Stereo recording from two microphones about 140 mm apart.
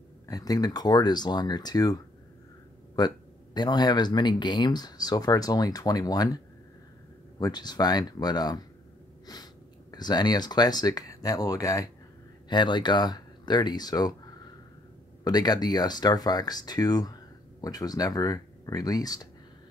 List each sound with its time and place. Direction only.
0.3 s speech: 25° left (ahead or behind)
3.0 s speech: 30° left (ahead or behind)